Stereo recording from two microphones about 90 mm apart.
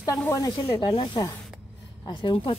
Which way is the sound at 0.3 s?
45° left (ahead or behind).